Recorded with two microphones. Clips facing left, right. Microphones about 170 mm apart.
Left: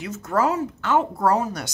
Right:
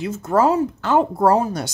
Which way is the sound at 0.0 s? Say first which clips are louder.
Right 5 dB; 30° right (ahead or behind).